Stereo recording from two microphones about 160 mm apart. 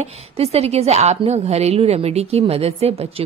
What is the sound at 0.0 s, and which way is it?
A woman's voice, 40° right (ahead or behind).